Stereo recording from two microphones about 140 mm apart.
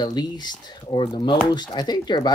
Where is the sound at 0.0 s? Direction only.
30° left (ahead or behind).